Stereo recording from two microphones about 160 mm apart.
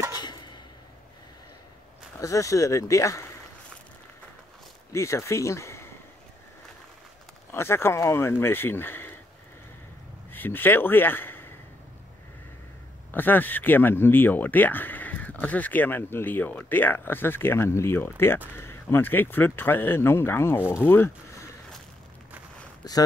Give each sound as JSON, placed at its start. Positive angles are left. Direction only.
{"t": 0.1, "sound": "a sound", "side_deg": 25}
{"t": 2.1, "sound": "speech", "side_deg": 20}
{"t": 4.9, "sound": "speech", "side_deg": 20}
{"t": 7.5, "sound": "speech", "side_deg": 15}
{"t": 10.3, "sound": "a man's voice", "side_deg": 10}
{"t": 13.1, "sound": "speech", "side_deg": 10}